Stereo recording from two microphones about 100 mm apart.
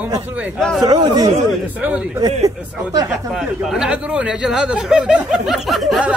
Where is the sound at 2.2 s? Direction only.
40° right (ahead or behind).